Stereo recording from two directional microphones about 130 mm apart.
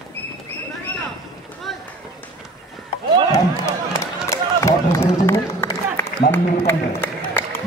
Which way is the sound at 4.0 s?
20° left (ahead or behind).